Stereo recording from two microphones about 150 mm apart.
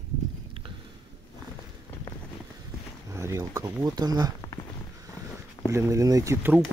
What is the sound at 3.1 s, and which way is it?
Speech, 20° right (ahead or behind).